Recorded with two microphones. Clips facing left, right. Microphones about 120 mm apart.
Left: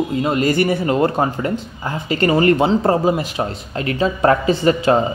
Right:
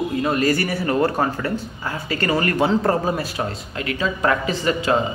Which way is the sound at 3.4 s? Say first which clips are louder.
Left 4 dB; 30° left (ahead or behind).